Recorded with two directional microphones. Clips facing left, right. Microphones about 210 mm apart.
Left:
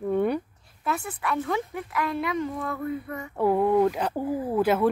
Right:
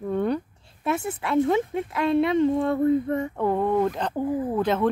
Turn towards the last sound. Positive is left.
turn(degrees=10)  # may be behind; listen again after turning